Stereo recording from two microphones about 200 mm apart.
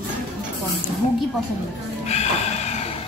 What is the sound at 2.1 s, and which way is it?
Music, 35° left (ahead or behind).